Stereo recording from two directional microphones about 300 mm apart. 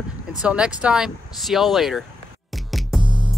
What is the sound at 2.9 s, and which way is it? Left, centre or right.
Music, centre.